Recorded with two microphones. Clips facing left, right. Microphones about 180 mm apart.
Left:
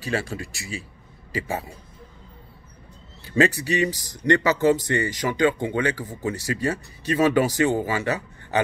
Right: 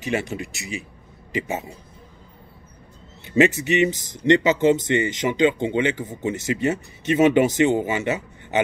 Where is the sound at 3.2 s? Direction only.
20° right (ahead or behind).